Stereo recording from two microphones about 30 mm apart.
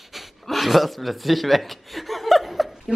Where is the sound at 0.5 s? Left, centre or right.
Centre.